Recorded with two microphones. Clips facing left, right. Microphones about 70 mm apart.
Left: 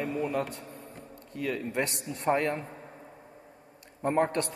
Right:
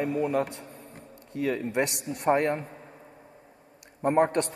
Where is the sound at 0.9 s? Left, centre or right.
Right.